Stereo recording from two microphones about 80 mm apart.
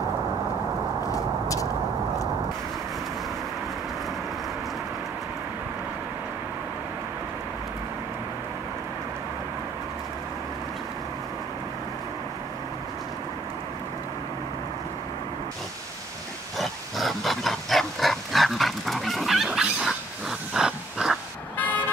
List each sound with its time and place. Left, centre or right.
16.5 s pig: centre
21.5 s vehicle: left